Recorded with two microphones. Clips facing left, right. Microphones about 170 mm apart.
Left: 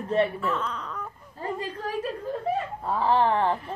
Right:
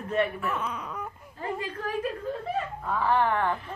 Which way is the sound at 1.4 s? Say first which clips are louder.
Left 1 dB; 35° left (ahead or behind).